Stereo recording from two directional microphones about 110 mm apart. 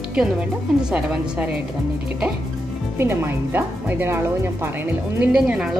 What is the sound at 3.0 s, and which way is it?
Speech, 20° right (ahead or behind).